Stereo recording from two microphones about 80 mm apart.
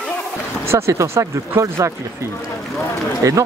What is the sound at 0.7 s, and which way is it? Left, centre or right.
Speech, right.